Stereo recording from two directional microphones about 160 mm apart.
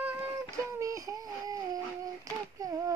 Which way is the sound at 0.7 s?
20° right (ahead or behind).